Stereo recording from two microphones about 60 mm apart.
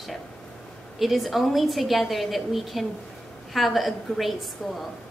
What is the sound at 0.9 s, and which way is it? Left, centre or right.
A woman's voice, centre.